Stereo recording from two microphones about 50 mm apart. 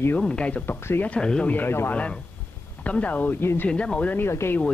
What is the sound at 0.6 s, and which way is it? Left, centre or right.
Speech, left.